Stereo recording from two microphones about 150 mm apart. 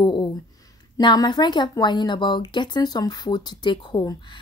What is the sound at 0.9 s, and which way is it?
A woman's voice, 25° left (ahead or behind).